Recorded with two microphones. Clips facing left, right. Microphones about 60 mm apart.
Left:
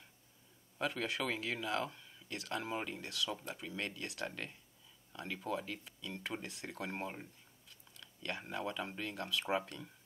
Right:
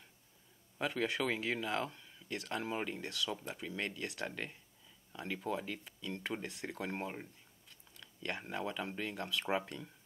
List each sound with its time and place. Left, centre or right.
0.7 s speech: centre
6.4 s speech: right
6.9 s speech: centre
8.0 s speech: centre